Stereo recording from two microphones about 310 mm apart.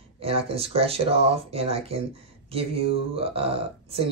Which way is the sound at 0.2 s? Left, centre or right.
Centre.